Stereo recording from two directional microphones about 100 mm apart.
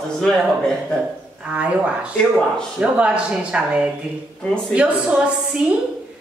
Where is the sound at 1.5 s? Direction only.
10° right (ahead or behind).